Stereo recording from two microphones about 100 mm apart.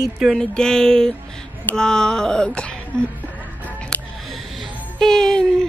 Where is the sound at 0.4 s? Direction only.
5° left (ahead or behind).